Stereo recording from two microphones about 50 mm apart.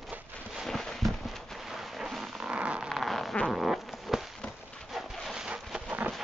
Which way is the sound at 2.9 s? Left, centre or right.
Centre.